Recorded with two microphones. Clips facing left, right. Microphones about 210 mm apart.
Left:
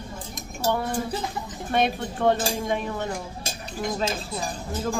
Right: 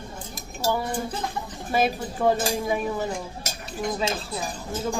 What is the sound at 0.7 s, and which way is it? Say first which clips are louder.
Speech: left 2 dB; centre (ahead or behind).